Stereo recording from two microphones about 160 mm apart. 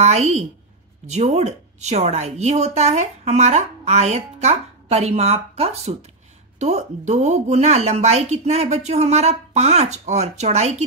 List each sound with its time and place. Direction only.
0.0 s a woman's voice: 45° right (ahead or behind)